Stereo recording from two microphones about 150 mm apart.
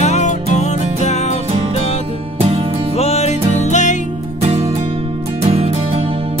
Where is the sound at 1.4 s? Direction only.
45° right (ahead or behind).